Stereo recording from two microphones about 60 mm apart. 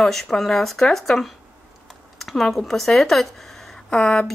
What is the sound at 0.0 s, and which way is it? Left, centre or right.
A woman's voice, centre.